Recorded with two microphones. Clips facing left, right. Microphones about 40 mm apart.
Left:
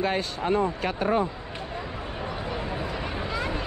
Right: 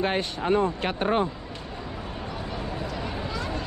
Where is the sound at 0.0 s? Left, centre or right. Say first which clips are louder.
Even; right.